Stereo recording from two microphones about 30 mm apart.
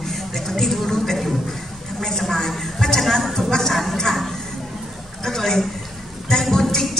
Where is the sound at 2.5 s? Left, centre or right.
Centre.